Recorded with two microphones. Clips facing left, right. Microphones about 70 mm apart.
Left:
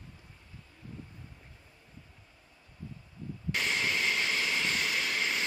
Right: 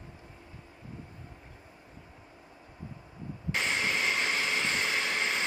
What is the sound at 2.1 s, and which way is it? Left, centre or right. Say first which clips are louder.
Vehicle: right 8 dB; right.